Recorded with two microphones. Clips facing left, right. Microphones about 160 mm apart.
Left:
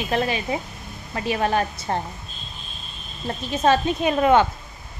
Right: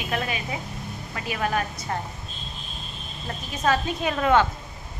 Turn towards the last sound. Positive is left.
turn(degrees=20)  # may be behind; listen again after turning